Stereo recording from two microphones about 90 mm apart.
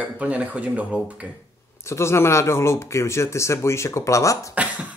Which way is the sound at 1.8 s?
30° left (ahead or behind).